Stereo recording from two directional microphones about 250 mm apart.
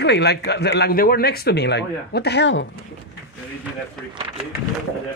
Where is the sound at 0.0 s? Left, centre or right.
Left.